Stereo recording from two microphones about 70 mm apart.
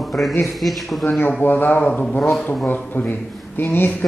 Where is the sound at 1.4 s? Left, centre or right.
Left.